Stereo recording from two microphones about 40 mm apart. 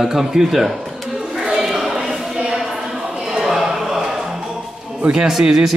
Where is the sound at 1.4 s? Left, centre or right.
Centre.